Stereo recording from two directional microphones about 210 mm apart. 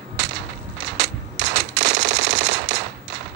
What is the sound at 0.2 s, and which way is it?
Machine gun, 55° right (ahead or behind).